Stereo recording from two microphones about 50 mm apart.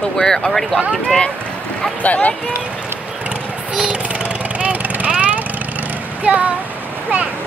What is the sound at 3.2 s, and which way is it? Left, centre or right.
Lawn mower, right.